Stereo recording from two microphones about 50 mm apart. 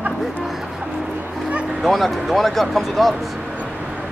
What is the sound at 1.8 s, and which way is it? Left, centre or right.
Speech, centre.